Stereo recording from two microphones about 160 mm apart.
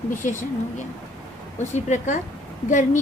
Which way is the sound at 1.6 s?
50° left (ahead or behind).